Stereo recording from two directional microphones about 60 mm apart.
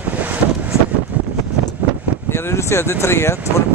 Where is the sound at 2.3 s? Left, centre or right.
Left.